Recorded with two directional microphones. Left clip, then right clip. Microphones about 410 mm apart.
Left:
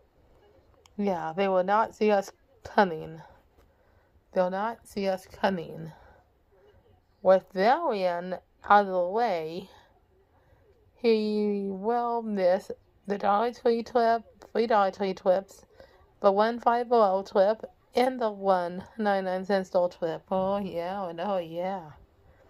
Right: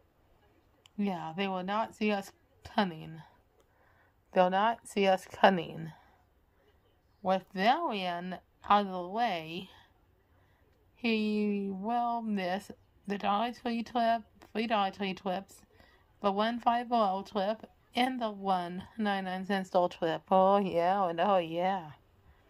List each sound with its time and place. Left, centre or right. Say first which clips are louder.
0.8 s speech: left 7 dB; centre
7.2 s speech: left 9 dB; centre
11.0 s speech: left 7 dB; centre